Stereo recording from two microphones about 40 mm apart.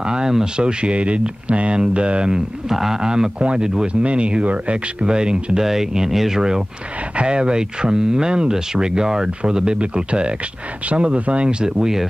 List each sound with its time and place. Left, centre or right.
0.1 s speech: centre
2.7 s speech: centre
3.0 s speech: centre
5.1 s speech: right
5.7 s speech: centre